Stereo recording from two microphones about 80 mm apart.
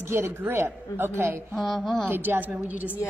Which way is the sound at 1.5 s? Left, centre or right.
Centre.